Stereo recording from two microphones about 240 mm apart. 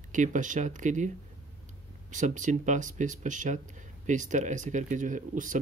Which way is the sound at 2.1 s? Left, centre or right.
Right.